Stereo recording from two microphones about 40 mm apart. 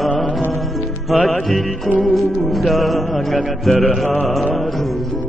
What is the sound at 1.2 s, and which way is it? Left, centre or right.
Music, centre.